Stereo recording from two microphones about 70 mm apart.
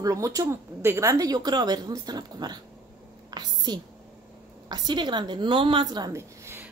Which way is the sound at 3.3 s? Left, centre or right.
Right.